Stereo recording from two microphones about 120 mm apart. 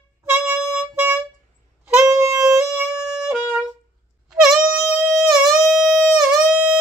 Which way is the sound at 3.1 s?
5° right (ahead or behind).